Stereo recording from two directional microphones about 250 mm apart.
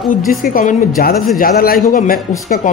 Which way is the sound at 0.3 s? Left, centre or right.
Left.